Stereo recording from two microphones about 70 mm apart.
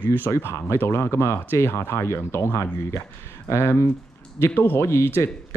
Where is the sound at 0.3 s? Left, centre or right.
Left.